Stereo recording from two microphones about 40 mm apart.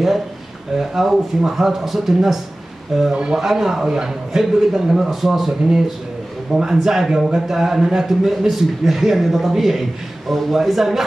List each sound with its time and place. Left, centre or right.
0.7 s a man's voice: centre
3.1 s speech: right
3.3 s a man's voice: centre